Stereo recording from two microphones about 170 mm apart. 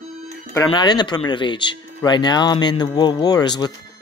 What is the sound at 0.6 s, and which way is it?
Speech, 25° left (ahead or behind).